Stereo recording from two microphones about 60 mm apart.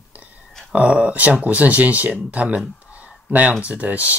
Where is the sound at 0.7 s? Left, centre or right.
Centre.